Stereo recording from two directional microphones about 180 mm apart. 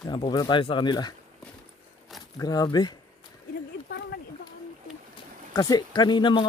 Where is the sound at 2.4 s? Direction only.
20° left (ahead or behind).